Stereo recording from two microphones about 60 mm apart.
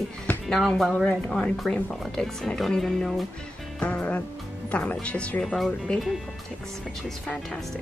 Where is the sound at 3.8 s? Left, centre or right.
Left.